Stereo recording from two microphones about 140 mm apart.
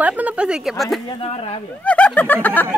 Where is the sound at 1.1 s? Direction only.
40° left (ahead or behind).